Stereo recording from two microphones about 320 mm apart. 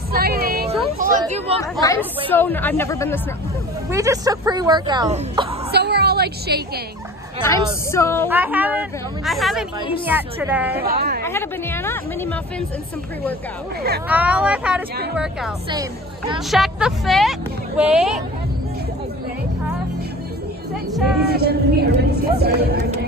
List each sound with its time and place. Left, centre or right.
0.1 s a sound: right
1.6 s a woman's voice: centre
3.9 s speech: centre
5.7 s a sound: right
7.9 s a woman's voice: centre
8.3 s a woman's voice: centre
10.8 s speech: right
11.2 s a woman's voice: centre
14.0 s a woman's voice: centre
16.3 s speech: centre
21.3 s speech: right